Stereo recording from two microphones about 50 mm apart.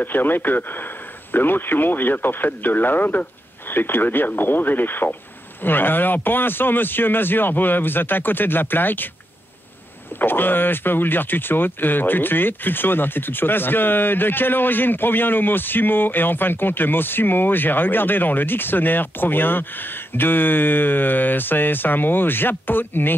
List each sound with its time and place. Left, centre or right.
0.0 s speech: left
10.1 s speech: left